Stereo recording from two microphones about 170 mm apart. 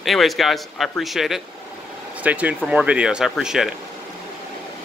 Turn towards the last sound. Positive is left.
turn(degrees=-5)  # may be behind; listen again after turning